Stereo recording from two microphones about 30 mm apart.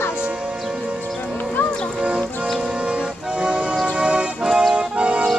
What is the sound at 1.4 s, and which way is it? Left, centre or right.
Music, left.